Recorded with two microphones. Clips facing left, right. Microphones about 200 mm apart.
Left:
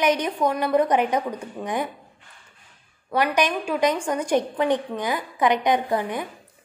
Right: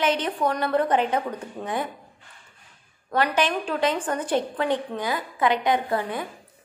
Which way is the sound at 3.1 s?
15° left (ahead or behind).